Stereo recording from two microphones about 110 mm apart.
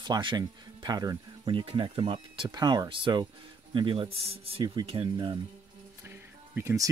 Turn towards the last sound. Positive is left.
turn(degrees=-25)  # may be behind; listen again after turning